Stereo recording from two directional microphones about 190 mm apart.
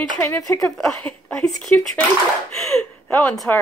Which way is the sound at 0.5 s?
5° left (ahead or behind).